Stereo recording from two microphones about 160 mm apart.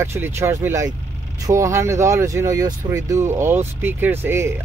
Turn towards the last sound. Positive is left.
turn(degrees=-15)  # may be behind; listen again after turning